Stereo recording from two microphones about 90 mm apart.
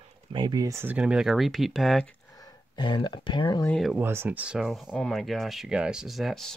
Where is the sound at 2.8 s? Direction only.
60° left (ahead or behind).